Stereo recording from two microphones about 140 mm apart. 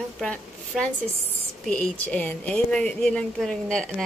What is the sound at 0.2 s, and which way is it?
A woman's voice, 5° left (ahead or behind).